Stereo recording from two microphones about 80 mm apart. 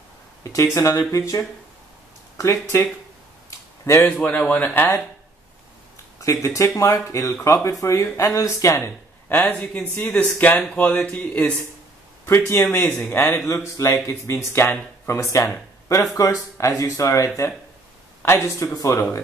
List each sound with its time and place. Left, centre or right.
0.4 s speech: left
3.4 s a sound: left
4.2 s speech: centre
6.2 s speech: left
9.3 s speech: centre
12.3 s speech: left
13.1 s speech: left
18.2 s speech: left